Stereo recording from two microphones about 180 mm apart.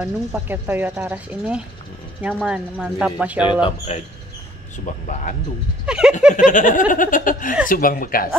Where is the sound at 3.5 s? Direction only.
30° left (ahead or behind).